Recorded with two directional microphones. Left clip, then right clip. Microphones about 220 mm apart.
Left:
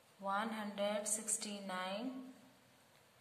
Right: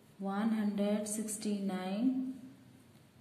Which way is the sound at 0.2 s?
10° left (ahead or behind).